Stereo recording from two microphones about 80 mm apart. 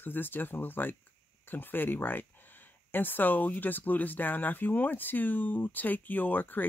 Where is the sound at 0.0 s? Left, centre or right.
Left.